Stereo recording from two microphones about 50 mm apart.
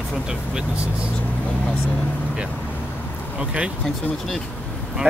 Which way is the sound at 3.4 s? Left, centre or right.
Right.